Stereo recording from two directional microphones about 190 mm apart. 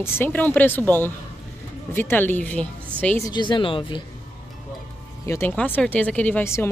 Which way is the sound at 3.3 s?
25° left (ahead or behind).